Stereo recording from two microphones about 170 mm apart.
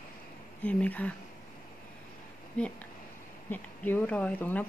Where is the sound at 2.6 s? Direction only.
5° left (ahead or behind).